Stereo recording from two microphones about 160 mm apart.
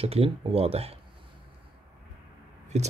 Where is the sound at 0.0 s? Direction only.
40° right (ahead or behind).